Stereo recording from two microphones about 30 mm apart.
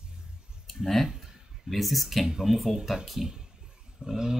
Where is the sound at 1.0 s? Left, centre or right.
Centre.